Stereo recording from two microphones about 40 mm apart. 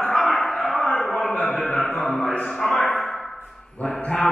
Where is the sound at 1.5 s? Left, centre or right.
Centre.